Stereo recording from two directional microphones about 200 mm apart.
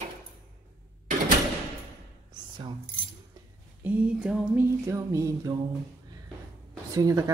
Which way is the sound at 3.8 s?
10° right (ahead or behind).